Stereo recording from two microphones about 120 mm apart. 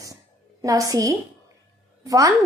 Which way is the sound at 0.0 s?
30° right (ahead or behind).